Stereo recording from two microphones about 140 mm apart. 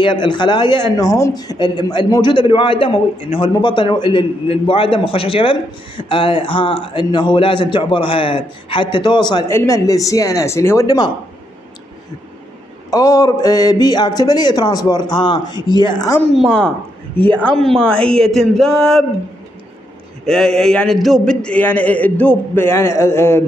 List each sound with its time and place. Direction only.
0.0 s a man's voice: 35° left (ahead or behind)
9.5 s speech: 20° left (ahead or behind)
12.9 s speech: 25° left (ahead or behind)
16.3 s a woman's voice: 5° left (ahead or behind)
17.7 s a woman's voice: 5° left (ahead or behind)
20.2 s a man's voice: 5° left (ahead or behind); by 23.4 s 20° left (ahead or behind)